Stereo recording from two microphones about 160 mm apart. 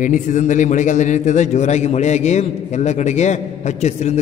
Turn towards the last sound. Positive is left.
turn(degrees=45)  # may be behind; listen again after turning